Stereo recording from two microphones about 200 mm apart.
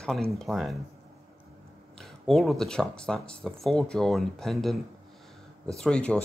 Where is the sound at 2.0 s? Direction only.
Centre (ahead or behind).